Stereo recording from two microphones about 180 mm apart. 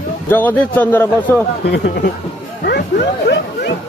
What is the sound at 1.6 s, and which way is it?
Speech, 70° left (ahead or behind).